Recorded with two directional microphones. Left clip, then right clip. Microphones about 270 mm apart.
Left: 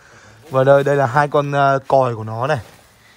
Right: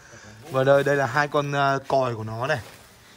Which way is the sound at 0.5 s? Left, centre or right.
Centre.